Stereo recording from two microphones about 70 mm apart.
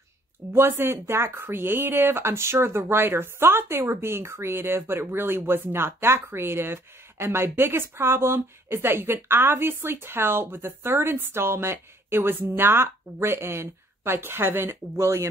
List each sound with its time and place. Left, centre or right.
0.5 s speech: right